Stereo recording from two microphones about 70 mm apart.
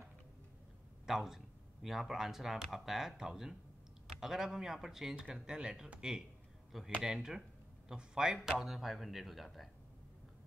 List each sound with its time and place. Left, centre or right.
1.0 s speech: centre